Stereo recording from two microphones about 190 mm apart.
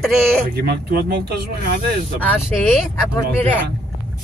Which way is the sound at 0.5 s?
55° right (ahead or behind).